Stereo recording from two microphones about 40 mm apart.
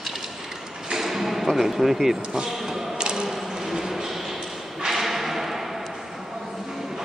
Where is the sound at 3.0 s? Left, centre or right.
Centre.